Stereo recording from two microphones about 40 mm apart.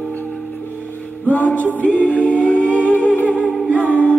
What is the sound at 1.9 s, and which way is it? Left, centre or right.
A capella, left.